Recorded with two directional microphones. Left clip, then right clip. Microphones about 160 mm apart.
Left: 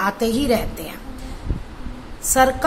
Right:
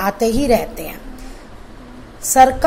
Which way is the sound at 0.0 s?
15° right (ahead or behind).